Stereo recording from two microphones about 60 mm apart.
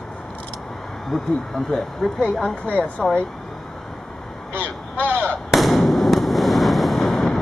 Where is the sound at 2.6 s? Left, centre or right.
Left.